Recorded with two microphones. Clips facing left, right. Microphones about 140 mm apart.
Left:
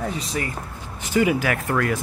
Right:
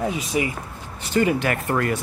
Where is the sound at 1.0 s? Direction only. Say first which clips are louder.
Even; 10° left (ahead or behind).